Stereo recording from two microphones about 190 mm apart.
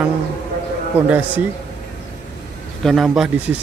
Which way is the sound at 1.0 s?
10° right (ahead or behind).